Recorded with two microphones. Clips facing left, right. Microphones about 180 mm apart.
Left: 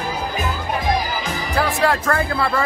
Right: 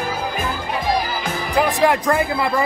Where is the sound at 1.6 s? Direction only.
15° right (ahead or behind).